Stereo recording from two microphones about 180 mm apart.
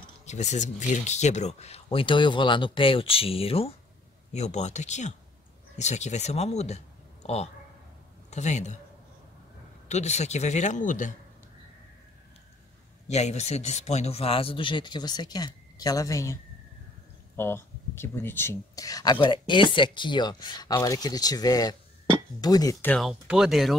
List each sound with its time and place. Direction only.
0.2 s speech: 40° left (ahead or behind)
8.3 s speech: 40° left (ahead or behind)
9.8 s speech: 40° left (ahead or behind)
13.1 s speech: 40° left (ahead or behind); by 16.3 s 20° left (ahead or behind)
17.4 s speech: 15° left (ahead or behind)
22.8 s speech: centre (ahead or behind)